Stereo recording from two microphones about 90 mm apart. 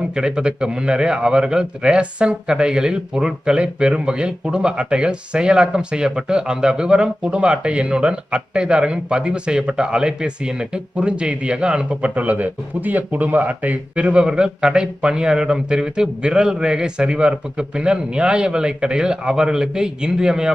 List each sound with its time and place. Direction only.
0.1 s a man's voice: 10° right (ahead or behind)